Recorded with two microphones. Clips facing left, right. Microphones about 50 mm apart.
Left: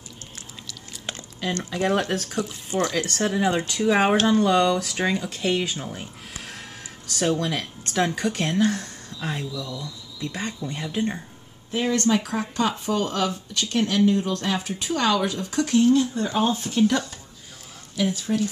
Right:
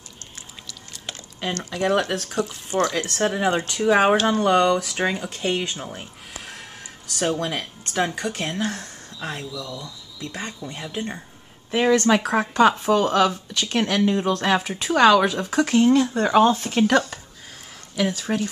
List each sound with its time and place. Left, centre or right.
1.6 s speech: centre
1.9 s speech: centre
2.2 s speech: centre
2.9 s speech: right
4.3 s speech: right
4.6 s speech: centre
5.6 s a sound: centre
7.2 s speech: centre
9.3 s speech: centre
10.3 s speech: centre
11.7 s a woman's voice: right
15.0 s a woman's voice: right
18.2 s speech: right